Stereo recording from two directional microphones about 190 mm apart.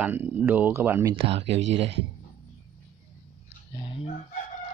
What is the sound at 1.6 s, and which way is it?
Speech, 70° right (ahead or behind).